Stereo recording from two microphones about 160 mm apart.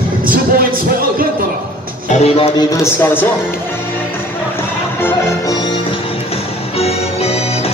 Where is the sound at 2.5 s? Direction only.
20° left (ahead or behind).